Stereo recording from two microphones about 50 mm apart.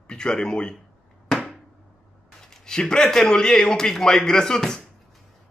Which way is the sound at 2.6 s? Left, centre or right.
Centre.